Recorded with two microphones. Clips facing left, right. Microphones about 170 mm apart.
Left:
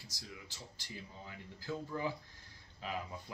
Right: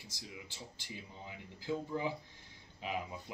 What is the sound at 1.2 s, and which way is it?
Speech, 15° right (ahead or behind).